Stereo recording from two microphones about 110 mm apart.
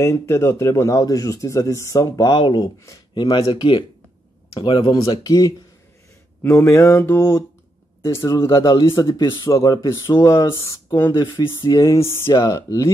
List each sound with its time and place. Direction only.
0.0 s speech: 25° left (ahead or behind)
6.4 s speech: 25° left (ahead or behind)
8.5 s speech: 40° left (ahead or behind)
9.5 s speech: 30° left (ahead or behind)
11.3 s speech: 35° left (ahead or behind)